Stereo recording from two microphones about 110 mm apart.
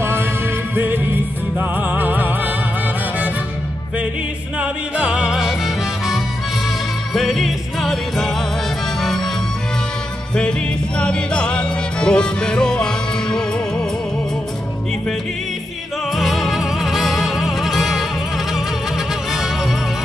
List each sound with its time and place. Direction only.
0.0 s music: 20° right (ahead or behind)
4.6 s music: 10° right (ahead or behind)
11.0 s music: 10° left (ahead or behind)
16.1 s music: centre (ahead or behind)